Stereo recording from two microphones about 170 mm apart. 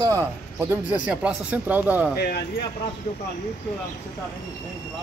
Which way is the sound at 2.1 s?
70° left (ahead or behind).